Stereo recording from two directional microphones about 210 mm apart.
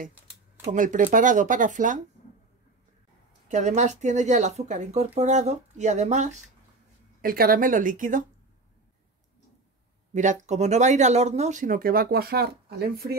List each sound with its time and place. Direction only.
0.7 s speech: 40° right (ahead or behind)
3.4 s speech: 35° right (ahead or behind)
10.1 s speech: 35° right (ahead or behind)